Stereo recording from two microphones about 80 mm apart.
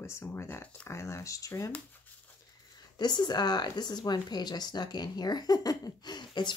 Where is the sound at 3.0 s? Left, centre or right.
Left.